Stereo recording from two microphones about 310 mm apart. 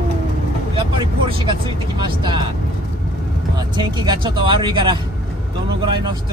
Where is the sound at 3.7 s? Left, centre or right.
Centre.